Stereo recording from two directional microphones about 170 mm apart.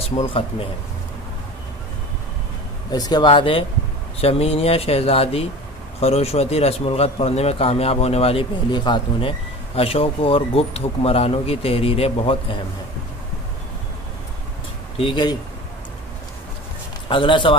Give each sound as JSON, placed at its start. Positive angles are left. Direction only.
{"t": 0.0, "sound": "speech", "side_deg": 30}
{"t": 2.9, "sound": "speech", "side_deg": 25}
{"t": 15.0, "sound": "speech", "side_deg": 30}
{"t": 17.1, "sound": "speech", "side_deg": 30}